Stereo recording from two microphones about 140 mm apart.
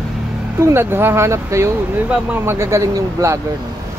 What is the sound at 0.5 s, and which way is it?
Speech, 15° right (ahead or behind).